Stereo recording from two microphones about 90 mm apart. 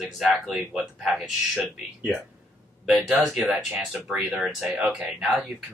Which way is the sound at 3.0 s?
10° right (ahead or behind).